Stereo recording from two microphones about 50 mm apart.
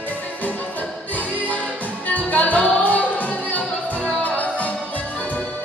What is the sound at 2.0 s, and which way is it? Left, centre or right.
Music, left.